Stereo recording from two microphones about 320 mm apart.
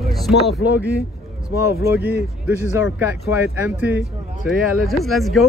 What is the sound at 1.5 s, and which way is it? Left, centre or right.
Speech, left.